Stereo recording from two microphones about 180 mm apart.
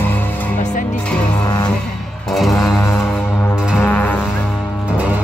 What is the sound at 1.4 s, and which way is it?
Music, 20° left (ahead or behind).